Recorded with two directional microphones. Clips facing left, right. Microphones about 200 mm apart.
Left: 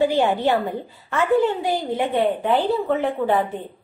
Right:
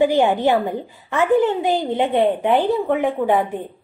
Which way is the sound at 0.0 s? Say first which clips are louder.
Right 3 dB; 15° right (ahead or behind).